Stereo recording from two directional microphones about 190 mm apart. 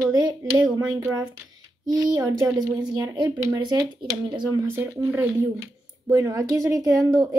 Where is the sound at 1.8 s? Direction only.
20° right (ahead or behind).